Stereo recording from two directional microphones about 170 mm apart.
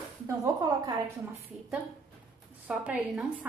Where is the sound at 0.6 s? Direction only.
25° right (ahead or behind).